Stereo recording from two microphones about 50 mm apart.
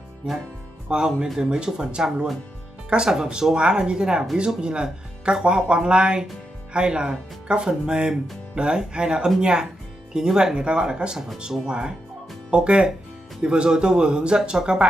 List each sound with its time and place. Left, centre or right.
0.8 s speech: centre